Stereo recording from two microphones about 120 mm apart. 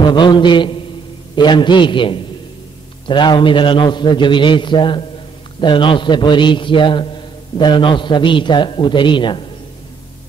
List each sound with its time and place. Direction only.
0.0 s a man's voice: 40° left (ahead or behind)